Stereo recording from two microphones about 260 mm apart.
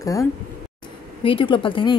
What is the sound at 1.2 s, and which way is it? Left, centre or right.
Speech, centre.